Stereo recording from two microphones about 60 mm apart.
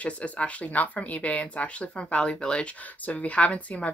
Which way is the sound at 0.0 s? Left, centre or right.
Left.